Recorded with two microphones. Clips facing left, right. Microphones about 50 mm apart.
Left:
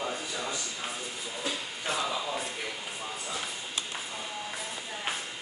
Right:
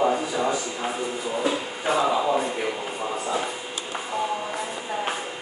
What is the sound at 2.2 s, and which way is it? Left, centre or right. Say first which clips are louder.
Speech: right 11 dB; right.